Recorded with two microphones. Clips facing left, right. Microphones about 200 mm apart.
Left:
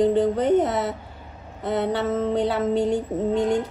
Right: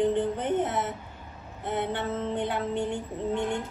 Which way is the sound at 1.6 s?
75° left (ahead or behind).